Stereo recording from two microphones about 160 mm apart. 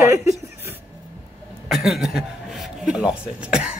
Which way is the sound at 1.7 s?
Centre (ahead or behind).